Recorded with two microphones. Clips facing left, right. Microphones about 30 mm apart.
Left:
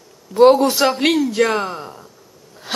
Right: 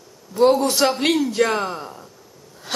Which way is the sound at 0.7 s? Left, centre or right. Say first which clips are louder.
Left 2 dB; centre.